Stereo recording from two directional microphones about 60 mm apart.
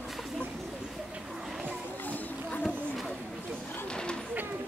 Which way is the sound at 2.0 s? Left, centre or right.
Left.